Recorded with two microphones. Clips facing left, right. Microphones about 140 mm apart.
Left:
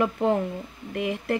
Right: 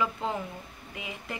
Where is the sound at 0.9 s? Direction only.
65° left (ahead or behind).